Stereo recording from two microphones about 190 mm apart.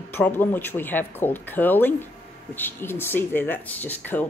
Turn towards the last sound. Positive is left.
turn(degrees=10)  # may be behind; listen again after turning